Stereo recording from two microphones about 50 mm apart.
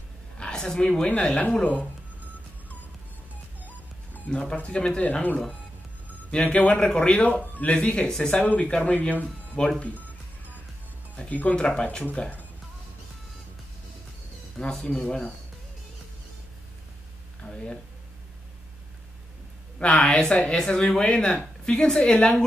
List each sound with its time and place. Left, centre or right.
0.4 s a sound: centre
1.0 s speech: left
3.6 s a sound: left
4.6 s speech: left
11.2 s speech: left
11.6 s speech: centre
14.6 s speech: centre
17.4 s a sound: centre
19.8 s speech: centre